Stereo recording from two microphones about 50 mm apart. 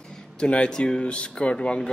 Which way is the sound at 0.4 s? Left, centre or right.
Centre.